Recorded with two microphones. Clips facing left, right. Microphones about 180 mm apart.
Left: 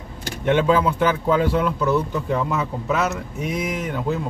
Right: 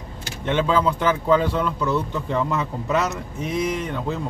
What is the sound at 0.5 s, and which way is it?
A man's voice, 15° left (ahead or behind).